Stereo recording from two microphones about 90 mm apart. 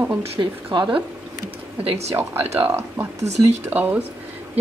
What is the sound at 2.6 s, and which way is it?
A woman's voice, 25° right (ahead or behind).